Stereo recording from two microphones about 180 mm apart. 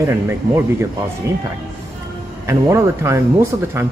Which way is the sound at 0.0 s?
15° right (ahead or behind).